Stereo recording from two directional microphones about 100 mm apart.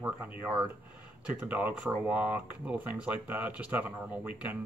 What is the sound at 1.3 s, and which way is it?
A man's voice, 15° right (ahead or behind).